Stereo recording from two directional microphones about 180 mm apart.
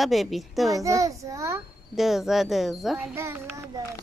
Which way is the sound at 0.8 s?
20° right (ahead or behind).